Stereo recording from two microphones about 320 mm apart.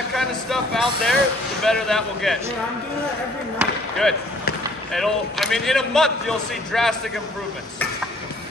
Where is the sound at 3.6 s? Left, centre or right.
Centre.